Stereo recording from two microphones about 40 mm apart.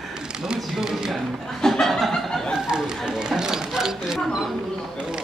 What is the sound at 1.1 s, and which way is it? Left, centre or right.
Chuckle, centre.